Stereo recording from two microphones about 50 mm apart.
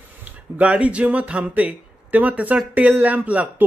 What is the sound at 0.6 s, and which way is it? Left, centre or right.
A man's voice, right.